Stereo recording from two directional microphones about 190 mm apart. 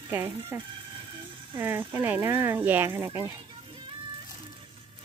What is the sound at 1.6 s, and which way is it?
Speech, 10° right (ahead or behind).